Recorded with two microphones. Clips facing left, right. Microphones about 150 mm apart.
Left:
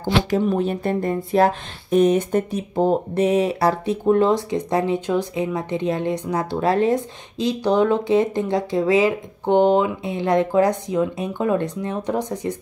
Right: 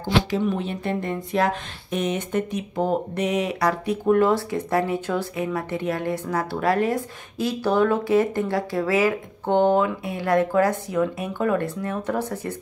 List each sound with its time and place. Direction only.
0.0 s speech: 40° left (ahead or behind); by 12.5 s 15° left (ahead or behind)